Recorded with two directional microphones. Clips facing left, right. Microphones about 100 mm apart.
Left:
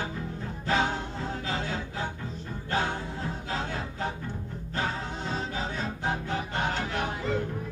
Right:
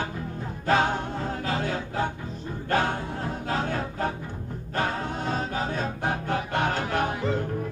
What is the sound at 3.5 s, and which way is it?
Music, 50° right (ahead or behind).